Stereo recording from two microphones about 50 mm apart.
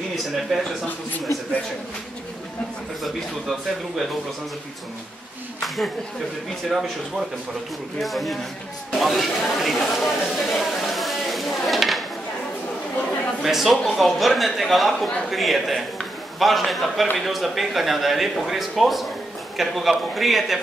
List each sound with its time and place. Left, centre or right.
0.5 s a man's voice: centre
0.8 s a man's voice: left
3.0 s a man's voice: centre
6.7 s a man's voice: centre
13.4 s a man's voice: centre